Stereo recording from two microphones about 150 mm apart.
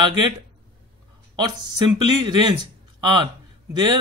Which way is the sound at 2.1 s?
30° right (ahead or behind).